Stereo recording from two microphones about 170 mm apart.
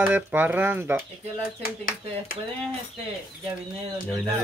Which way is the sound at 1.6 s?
55° left (ahead or behind).